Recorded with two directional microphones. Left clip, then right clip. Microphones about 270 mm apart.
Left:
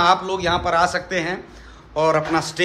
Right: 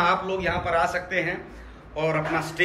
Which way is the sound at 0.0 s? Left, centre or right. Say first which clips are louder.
Left 5 dB; centre.